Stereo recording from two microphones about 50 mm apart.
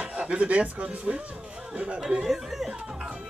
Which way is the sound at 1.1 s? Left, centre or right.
Right.